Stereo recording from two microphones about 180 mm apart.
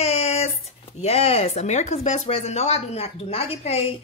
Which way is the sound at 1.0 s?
35° left (ahead or behind).